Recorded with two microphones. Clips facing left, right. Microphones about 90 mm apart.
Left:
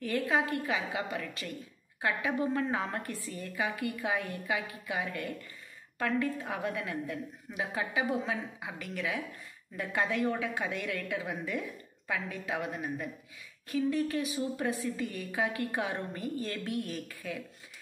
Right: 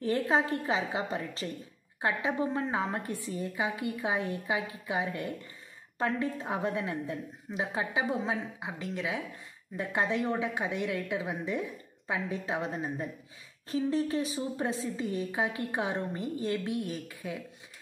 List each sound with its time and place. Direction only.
0.0 s a woman's voice: 30° right (ahead or behind)